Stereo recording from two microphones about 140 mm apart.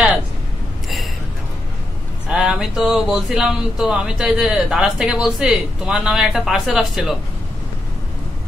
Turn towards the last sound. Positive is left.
turn(degrees=0)  # may be behind; listen again after turning